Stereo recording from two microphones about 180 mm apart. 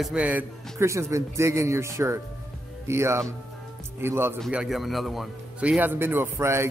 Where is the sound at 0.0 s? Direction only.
5° right (ahead or behind).